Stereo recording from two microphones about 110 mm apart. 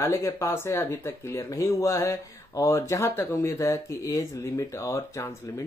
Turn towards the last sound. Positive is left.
turn(degrees=25)  # may be behind; listen again after turning